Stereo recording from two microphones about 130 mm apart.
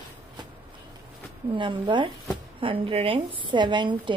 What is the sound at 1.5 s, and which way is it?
A woman's voice, 40° right (ahead or behind).